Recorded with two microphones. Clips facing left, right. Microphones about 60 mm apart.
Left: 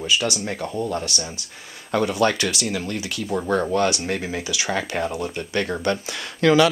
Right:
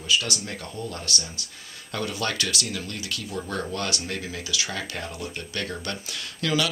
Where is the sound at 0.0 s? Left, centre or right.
Left.